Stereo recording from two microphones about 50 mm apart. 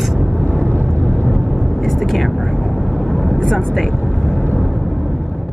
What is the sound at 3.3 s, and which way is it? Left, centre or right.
Vehicle, centre.